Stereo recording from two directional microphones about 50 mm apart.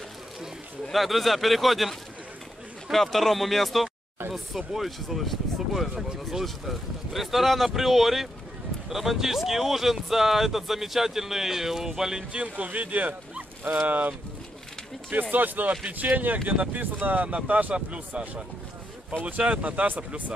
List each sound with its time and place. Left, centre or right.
0.9 s speech: centre
12.3 s speech: right
15.3 s speech: right
16.0 s speech: right
17.7 s speech: right
20.0 s speech: right